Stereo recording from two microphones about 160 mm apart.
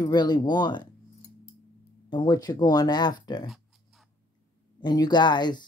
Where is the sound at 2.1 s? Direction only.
25° left (ahead or behind).